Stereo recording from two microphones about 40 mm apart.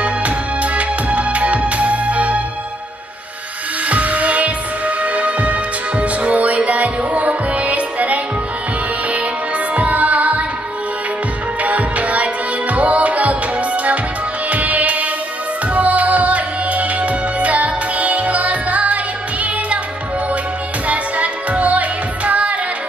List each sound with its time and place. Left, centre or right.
0.0 s music: right
3.9 s music: right
9.8 s music: right
11.6 s music: right
20.8 s music: right